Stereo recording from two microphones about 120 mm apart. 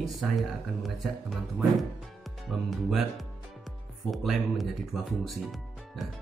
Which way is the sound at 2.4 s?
Centre (ahead or behind).